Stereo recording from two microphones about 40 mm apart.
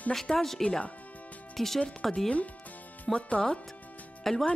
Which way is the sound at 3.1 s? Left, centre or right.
Left.